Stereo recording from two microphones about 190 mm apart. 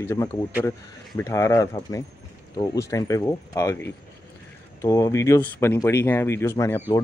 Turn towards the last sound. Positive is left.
turn(degrees=15)  # may be behind; listen again after turning